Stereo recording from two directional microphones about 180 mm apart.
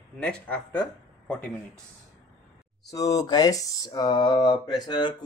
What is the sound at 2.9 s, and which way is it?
Speech, 20° left (ahead or behind).